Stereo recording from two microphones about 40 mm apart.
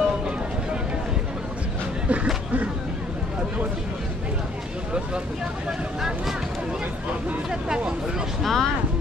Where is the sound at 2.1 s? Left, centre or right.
Right.